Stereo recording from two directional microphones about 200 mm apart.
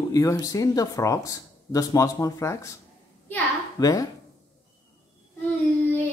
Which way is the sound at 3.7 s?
20° left (ahead or behind).